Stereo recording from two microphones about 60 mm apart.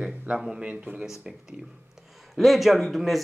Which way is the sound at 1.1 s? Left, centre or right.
Centre.